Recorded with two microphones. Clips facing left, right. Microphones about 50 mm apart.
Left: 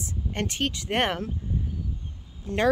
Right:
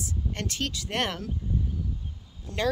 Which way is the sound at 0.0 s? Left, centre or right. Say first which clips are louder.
Left 3 dB; left.